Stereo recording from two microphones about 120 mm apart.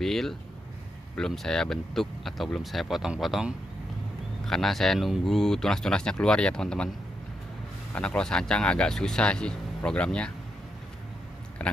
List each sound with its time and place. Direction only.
0.0 s speech: 5° left (ahead or behind)
7.9 s speech: 10° left (ahead or behind)
11.6 s speech: 10° left (ahead or behind)